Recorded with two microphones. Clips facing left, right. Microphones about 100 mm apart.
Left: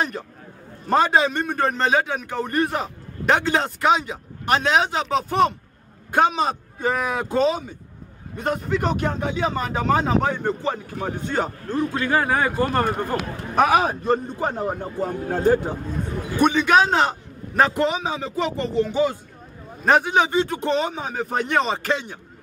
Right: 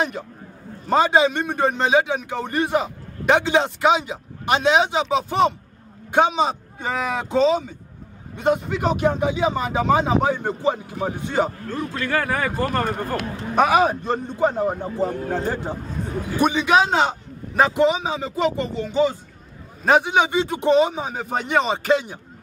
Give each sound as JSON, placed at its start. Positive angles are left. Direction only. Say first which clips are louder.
{"t": 0.8, "sound": "a man's voice", "louder": "right 1 dB", "side_deg": 0}
{"t": 11.7, "sound": "a man's voice", "louder": "left 3 dB", "side_deg": 25}
{"t": 13.6, "sound": "a man's voice", "louder": "right 1 dB", "side_deg": 0}